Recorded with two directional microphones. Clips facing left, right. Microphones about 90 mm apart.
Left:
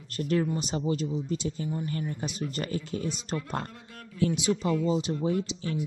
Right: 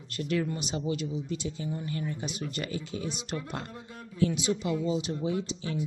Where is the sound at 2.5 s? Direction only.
45° left (ahead or behind).